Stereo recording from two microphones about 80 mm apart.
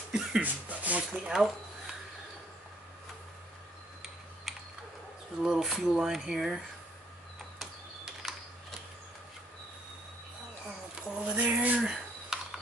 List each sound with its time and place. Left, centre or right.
0.1 s speech: centre
4.5 s typing: centre
5.4 s speech: centre
7.5 s a sound: centre
11.1 s speech: centre
12.3 s a sound: centre